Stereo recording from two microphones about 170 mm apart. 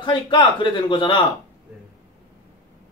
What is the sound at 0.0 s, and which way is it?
A man's voice, 25° left (ahead or behind).